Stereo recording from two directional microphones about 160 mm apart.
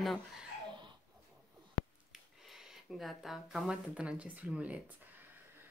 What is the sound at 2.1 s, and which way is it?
Speech, centre (ahead or behind).